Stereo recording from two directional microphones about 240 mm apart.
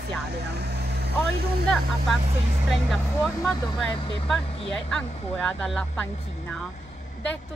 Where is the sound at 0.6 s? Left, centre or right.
Right.